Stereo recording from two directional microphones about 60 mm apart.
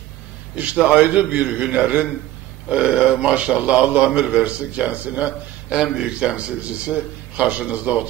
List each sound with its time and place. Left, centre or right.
0.6 s a man's voice: right